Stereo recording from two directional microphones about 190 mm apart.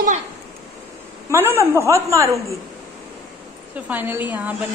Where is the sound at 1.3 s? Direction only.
10° right (ahead or behind).